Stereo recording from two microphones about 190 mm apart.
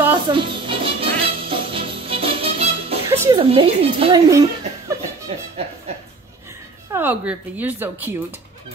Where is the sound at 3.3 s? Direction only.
30° right (ahead or behind).